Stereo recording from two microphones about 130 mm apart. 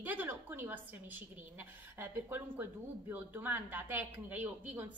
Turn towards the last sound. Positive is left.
turn(degrees=-10)  # may be behind; listen again after turning